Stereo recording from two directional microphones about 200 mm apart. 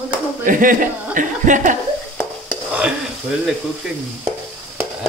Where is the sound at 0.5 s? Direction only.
40° right (ahead or behind).